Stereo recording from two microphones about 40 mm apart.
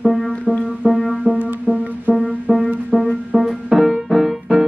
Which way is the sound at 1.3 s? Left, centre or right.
Right.